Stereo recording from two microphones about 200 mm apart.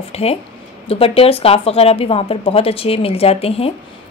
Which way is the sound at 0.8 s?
30° left (ahead or behind).